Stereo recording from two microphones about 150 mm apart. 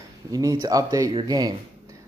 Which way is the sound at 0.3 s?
25° right (ahead or behind).